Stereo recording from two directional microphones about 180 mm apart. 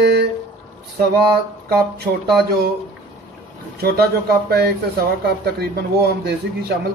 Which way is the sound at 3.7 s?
60° right (ahead or behind).